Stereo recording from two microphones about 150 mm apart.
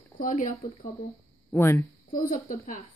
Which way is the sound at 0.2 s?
60° left (ahead or behind).